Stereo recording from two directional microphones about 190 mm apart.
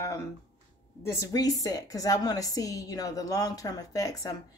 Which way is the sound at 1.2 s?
20° left (ahead or behind).